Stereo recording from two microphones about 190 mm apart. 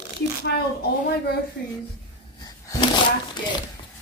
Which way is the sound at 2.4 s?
20° left (ahead or behind).